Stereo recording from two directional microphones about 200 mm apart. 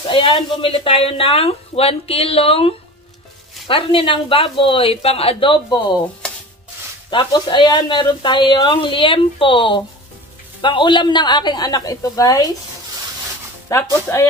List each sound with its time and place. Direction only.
0.0 s speech: 25° left (ahead or behind)
7.1 s speech: 20° left (ahead or behind)
13.7 s speech: 15° left (ahead or behind)